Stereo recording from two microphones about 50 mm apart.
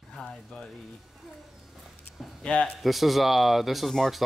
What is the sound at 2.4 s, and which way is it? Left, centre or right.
Speech, left.